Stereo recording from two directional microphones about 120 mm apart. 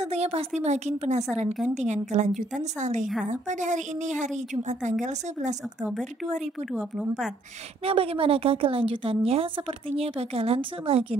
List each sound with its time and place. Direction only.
0.0 s a woman's voice: 60° right (ahead or behind)
0.6 s a woman's voice: 70° right (ahead or behind)
6.7 s a woman's voice: centre (ahead or behind)
7.8 s a woman's voice: 50° right (ahead or behind)